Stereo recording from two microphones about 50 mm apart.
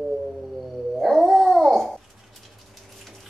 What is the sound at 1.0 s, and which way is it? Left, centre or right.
Babbling, centre.